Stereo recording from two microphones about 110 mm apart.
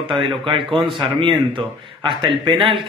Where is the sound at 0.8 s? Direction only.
50° right (ahead or behind).